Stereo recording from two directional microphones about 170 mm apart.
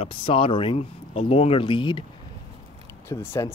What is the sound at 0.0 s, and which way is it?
Speech, 30° left (ahead or behind).